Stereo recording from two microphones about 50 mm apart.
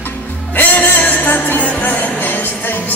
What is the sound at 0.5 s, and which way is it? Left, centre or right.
Music, left.